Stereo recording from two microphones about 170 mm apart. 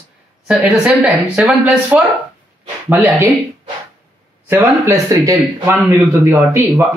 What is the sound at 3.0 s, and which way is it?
Speech, 15° right (ahead or behind).